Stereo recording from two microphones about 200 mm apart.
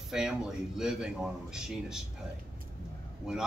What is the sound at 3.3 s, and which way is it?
Speech, 5° right (ahead or behind).